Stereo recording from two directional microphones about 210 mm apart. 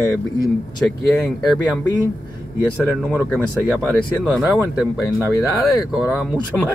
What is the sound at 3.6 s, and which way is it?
Speech, 5° right (ahead or behind).